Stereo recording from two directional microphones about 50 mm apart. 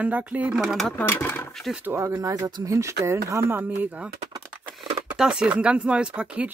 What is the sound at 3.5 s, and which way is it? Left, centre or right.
Speech, right.